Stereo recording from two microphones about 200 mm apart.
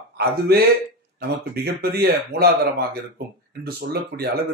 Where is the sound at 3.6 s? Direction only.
50° right (ahead or behind).